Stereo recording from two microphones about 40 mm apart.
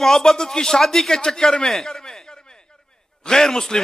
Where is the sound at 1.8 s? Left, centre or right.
Centre.